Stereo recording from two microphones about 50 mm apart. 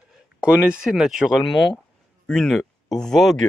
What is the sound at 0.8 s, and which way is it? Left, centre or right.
Speech, centre.